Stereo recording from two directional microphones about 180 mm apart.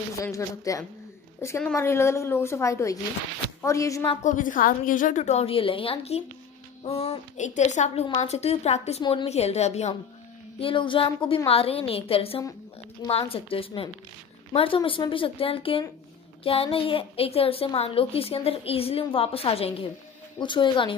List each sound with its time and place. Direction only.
0.2 s a woman's voice: 15° left (ahead or behind)
4.2 s a woman's voice: 45° left (ahead or behind); by 20.9 s 25° left (ahead or behind)